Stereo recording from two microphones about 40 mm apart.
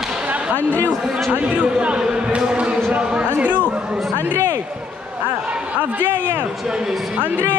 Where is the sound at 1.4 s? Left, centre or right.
Right.